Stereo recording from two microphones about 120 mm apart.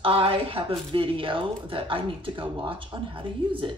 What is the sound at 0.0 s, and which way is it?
A woman's voice, 45° right (ahead or behind).